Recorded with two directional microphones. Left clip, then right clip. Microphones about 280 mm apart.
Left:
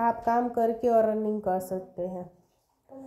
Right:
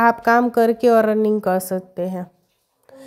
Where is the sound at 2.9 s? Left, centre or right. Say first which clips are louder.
Right 3 dB; right.